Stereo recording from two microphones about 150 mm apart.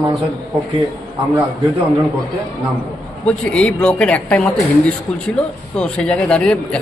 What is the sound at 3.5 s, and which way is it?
A man's voice, 5° left (ahead or behind).